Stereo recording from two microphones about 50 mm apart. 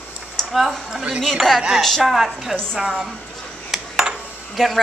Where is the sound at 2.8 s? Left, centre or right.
Centre.